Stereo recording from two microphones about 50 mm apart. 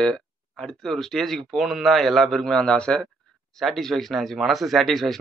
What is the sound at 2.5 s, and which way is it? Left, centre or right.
Speech, centre.